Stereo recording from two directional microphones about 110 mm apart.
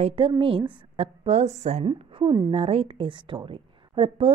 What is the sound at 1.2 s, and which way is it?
Speech, 85° right.